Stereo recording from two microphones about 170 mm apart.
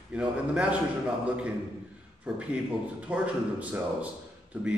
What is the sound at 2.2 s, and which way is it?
A man's voice, 5° right (ahead or behind).